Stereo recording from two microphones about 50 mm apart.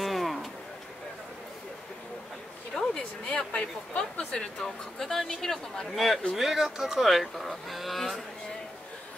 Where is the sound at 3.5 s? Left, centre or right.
Left.